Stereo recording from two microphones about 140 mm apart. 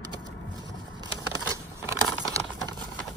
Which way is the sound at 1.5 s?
25° right (ahead or behind).